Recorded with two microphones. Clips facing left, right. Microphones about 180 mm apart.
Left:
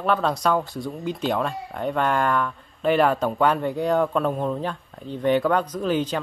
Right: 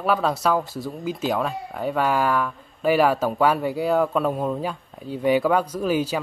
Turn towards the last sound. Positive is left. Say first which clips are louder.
# right 1 dB
turn(degrees=-10)  # may be behind; listen again after turning